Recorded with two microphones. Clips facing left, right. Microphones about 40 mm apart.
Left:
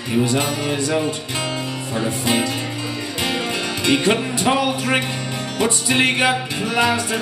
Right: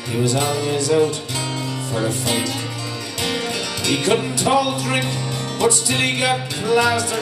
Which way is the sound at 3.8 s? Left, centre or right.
Left.